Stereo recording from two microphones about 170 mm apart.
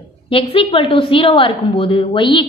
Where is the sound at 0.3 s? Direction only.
30° left (ahead or behind).